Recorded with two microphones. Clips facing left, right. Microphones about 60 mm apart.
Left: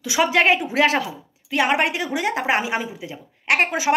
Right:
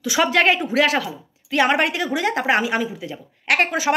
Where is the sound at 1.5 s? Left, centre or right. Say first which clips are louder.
Right 1 dB; centre.